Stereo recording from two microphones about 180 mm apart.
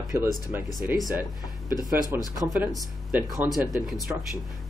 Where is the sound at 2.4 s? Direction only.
5° right (ahead or behind).